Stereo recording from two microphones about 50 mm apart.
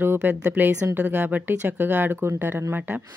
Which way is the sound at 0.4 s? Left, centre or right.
Right.